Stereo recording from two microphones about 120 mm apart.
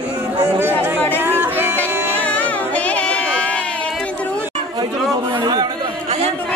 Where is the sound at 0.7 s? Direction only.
15° left (ahead or behind).